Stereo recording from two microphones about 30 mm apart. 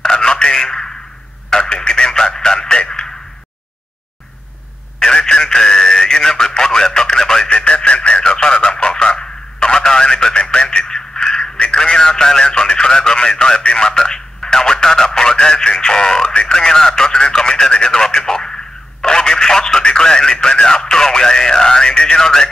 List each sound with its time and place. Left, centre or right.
0.0 s telephone: left
1.5 s speech: left
5.0 s speech: left
7.4 s speech: left